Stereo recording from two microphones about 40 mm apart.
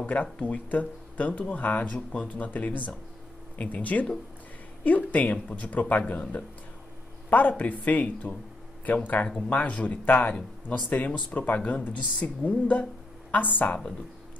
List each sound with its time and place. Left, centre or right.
0.0 s speech: left
7.2 s speech: left
9.8 s speech: left